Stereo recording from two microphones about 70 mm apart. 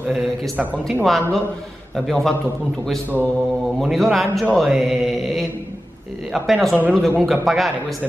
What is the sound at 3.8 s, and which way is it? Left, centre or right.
Speech, centre.